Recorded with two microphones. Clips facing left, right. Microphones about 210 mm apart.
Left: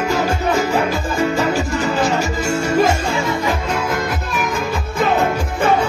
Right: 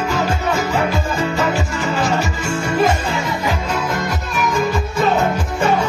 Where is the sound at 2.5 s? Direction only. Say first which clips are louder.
Left 1 dB; 45° left (ahead or behind).